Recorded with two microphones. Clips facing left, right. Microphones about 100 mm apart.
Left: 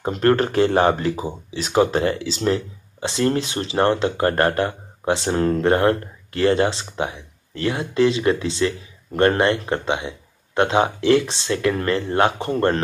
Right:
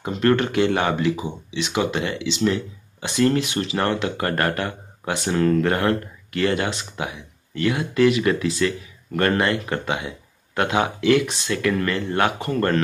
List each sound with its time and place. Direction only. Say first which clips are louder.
0.0 s speech: left 2 dB; 35° left (ahead or behind)